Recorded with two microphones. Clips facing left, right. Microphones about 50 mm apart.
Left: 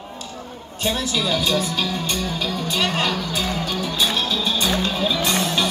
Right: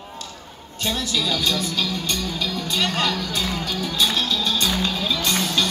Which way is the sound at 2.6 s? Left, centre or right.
Centre.